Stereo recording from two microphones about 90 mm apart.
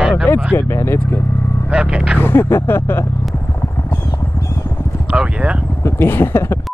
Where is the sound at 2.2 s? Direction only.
25° left (ahead or behind).